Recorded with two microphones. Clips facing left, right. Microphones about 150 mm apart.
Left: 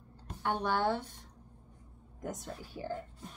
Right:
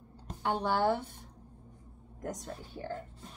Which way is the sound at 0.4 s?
10° right (ahead or behind).